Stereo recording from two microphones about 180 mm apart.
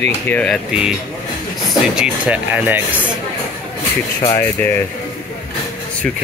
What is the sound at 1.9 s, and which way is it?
Speech, 5° right (ahead or behind).